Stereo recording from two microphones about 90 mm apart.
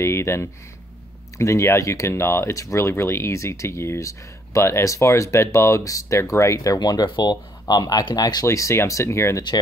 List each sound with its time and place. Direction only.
0.0 s speech: 30° left (ahead or behind); by 8.5 s 45° left (ahead or behind)
8.5 s speech: 35° left (ahead or behind)